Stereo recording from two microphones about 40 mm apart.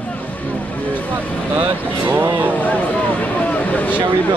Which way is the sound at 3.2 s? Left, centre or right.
Left.